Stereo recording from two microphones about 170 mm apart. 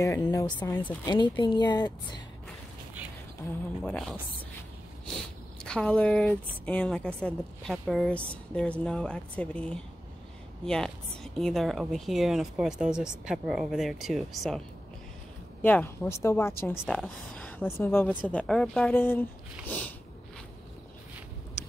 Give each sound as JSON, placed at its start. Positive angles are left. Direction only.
{"t": 0.0, "sound": "a woman's voice", "side_deg": 20}
{"t": 5.6, "sound": "a woman's voice", "side_deg": 5}
{"t": 15.6, "sound": "a woman's voice", "side_deg": 10}
{"t": 16.8, "sound": "a woman's voice", "side_deg": 5}